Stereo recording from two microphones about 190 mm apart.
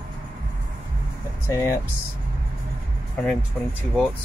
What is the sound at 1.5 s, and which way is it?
Speech, 15° left (ahead or behind).